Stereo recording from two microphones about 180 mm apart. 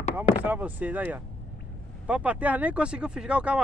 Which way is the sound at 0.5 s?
10° right (ahead or behind).